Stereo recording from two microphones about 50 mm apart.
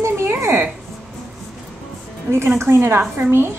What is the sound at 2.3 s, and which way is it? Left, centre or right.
A woman's voice, right.